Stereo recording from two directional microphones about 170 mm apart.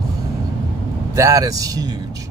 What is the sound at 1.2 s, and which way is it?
Speech, 20° right (ahead or behind).